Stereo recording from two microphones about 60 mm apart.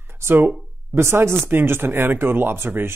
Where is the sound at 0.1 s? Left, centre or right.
Right.